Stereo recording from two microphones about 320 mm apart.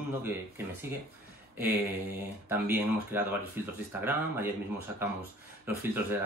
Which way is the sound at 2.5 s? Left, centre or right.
Centre.